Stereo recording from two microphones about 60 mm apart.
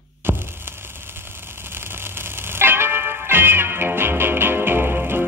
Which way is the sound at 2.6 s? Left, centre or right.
Right.